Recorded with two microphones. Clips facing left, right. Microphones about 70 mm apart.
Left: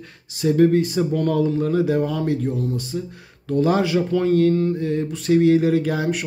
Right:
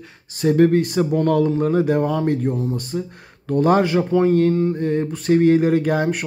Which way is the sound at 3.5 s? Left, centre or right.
Right.